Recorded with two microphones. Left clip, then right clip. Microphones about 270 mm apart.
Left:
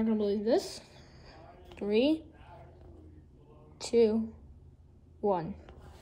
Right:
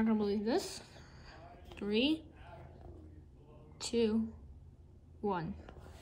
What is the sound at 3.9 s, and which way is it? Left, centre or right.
Speech, centre.